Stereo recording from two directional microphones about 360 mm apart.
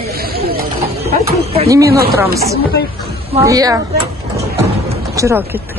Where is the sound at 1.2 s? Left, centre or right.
Centre.